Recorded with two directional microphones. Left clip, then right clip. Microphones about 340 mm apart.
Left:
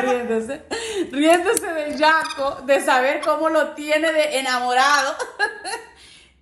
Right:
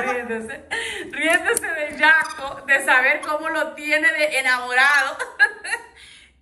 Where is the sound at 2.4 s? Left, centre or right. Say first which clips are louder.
Left 1 dB; centre.